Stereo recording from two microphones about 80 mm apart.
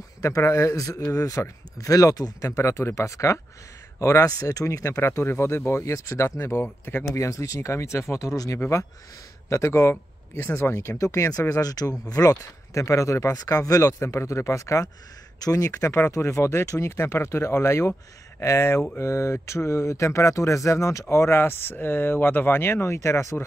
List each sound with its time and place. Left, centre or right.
0.2 s speech: left
5.0 s speech: left
7.2 s speech: left
14.0 s speech: left
15.3 s speech: left